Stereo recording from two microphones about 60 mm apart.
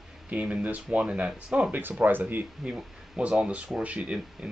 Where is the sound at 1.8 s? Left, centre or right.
Right.